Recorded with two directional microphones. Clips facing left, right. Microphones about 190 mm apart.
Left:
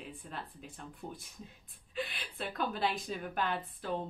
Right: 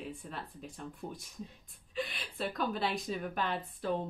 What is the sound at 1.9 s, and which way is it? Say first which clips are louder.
A woman's voice: right 2 dB; centre (ahead or behind).